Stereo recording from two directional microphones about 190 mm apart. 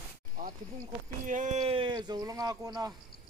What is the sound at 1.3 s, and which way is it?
Speech, 40° right (ahead or behind).